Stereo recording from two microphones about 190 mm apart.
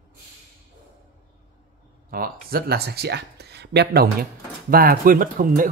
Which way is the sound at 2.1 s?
50° right (ahead or behind).